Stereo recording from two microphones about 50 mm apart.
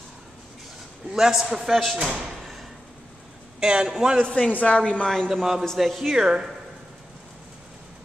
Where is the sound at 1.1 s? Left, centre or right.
Centre.